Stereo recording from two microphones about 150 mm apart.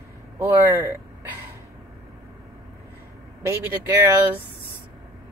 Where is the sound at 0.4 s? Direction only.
20° right (ahead or behind).